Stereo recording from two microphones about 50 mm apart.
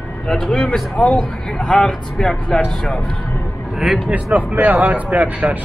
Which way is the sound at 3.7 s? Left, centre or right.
Centre.